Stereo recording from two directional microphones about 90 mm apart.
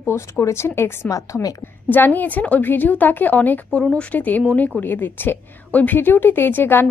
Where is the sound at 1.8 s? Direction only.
20° left (ahead or behind).